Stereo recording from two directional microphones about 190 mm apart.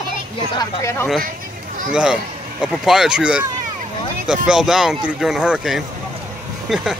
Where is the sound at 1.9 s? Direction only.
5° right (ahead or behind).